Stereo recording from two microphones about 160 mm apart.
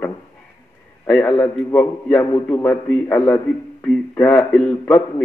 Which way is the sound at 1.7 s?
10° left (ahead or behind).